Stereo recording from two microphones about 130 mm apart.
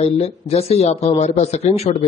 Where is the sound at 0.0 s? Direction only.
50° left (ahead or behind).